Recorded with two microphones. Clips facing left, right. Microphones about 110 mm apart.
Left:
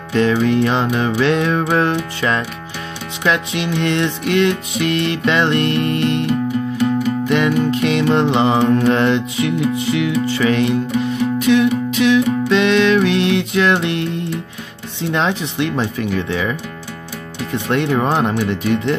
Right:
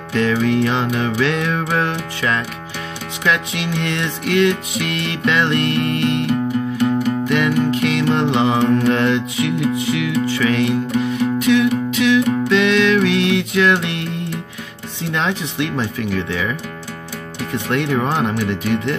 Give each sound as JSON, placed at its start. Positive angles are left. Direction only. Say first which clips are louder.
{"t": 0.1, "sound": "music", "louder": "left 2 dB", "side_deg": 25}
{"t": 7.2, "sound": "music", "louder": "left 2 dB", "side_deg": 30}
{"t": 15.1, "sound": "music", "louder": "left 2 dB", "side_deg": 30}
{"t": 17.6, "sound": "music", "louder": "left 2 dB", "side_deg": 30}